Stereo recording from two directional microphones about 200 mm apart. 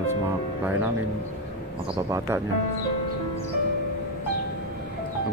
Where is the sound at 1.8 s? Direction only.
25° right (ahead or behind).